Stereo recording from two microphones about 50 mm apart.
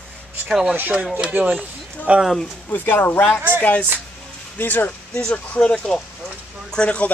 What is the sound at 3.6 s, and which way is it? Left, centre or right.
Speech, left.